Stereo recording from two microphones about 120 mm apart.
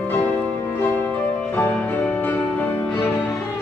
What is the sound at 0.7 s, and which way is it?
Music, 15° left (ahead or behind).